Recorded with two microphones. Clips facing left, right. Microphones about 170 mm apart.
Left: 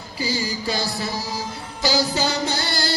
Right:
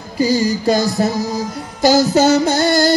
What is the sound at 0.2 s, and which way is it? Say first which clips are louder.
Music: right 11 dB; 45° right (ahead or behind).